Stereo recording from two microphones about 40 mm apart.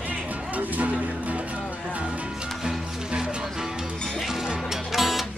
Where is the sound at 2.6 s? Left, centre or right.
Centre.